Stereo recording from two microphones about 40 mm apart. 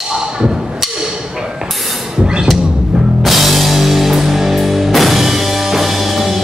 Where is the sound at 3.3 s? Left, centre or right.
Centre.